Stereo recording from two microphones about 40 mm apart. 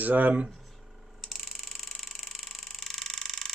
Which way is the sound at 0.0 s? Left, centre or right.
Right.